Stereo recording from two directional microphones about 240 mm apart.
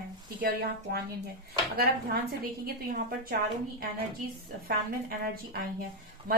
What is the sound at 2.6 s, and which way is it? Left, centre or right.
Speech, right.